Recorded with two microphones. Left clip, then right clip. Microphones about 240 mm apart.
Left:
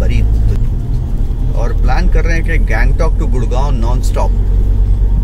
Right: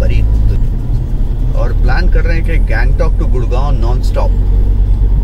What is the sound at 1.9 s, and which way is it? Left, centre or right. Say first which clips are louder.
Speech: left 1 dB; centre.